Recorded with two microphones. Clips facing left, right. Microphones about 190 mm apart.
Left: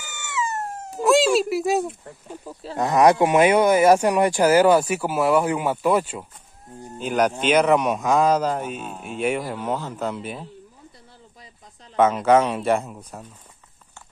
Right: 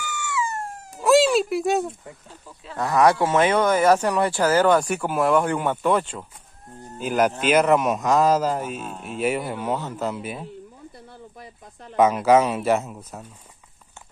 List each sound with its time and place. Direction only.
0.0 s wail: 20° left (ahead or behind)
1.0 s speech: centre (ahead or behind)
2.4 s speech: 35° left (ahead or behind)
2.8 s speech: 20° left (ahead or behind)
7.0 s a man's voice: 5° right (ahead or behind)
11.9 s speech: 10° right (ahead or behind)